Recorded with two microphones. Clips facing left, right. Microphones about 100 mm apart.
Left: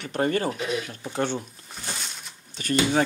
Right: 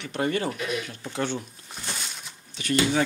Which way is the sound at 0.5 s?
25° left (ahead or behind).